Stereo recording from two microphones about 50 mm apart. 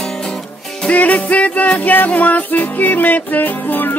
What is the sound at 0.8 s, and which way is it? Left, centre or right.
Music, left.